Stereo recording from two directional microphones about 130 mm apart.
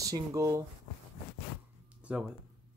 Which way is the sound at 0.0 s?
25° right (ahead or behind).